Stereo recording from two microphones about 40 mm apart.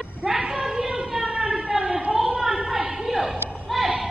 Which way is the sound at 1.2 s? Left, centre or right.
Right.